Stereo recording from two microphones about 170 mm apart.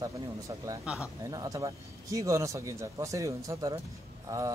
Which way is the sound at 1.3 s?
20° right (ahead or behind).